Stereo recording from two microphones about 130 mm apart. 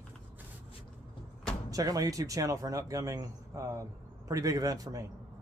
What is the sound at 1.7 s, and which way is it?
Speech, 30° right (ahead or behind).